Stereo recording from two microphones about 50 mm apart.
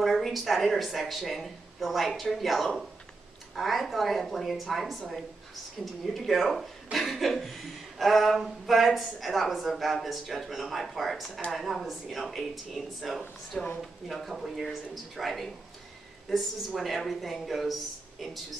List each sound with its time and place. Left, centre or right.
0.0 s speech: centre
13.5 s speech: centre
14.0 s speech: centre